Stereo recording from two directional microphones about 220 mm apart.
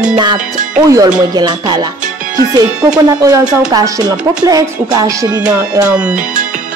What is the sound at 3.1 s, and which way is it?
Music, 15° right (ahead or behind).